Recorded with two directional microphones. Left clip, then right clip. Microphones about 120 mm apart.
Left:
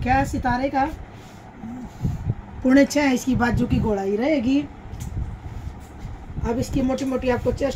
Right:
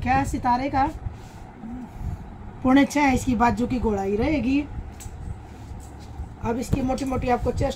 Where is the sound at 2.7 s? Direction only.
25° right (ahead or behind).